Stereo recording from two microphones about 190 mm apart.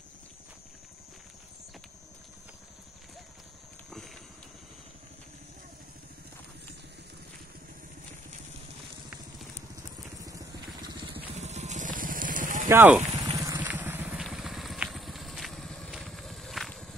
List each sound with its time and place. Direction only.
11.3 s vehicle: 35° right (ahead or behind)
12.6 s speech: 10° right (ahead or behind)
13.1 s vehicle: 20° right (ahead or behind); by 16.9 s centre (ahead or behind)